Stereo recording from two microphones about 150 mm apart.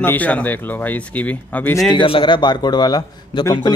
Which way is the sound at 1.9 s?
35° left (ahead or behind).